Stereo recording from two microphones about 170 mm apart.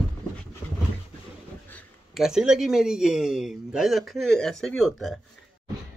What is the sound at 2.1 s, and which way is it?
A man's voice, 5° right (ahead or behind).